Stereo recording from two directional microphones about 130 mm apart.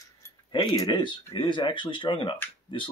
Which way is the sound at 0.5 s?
30° left (ahead or behind).